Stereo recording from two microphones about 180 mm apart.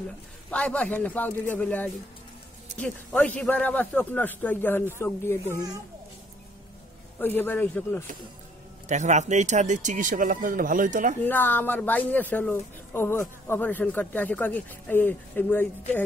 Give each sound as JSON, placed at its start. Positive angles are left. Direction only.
{"t": 0.5, "sound": "a woman's voice", "side_deg": 5}
{"t": 5.4, "sound": "a child's voice", "side_deg": -15}
{"t": 7.2, "sound": "a woman's voice", "side_deg": 10}
{"t": 8.8, "sound": "speech", "side_deg": -40}
{"t": 11.2, "sound": "a woman's voice", "side_deg": 10}